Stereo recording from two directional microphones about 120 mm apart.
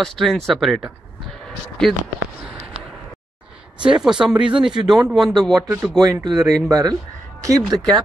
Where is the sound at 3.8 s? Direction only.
5° right (ahead or behind).